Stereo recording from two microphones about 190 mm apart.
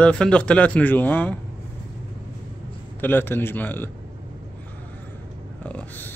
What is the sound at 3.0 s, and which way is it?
Speech, 10° left (ahead or behind).